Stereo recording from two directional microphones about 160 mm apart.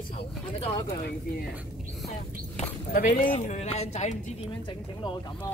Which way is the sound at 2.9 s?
60° left (ahead or behind).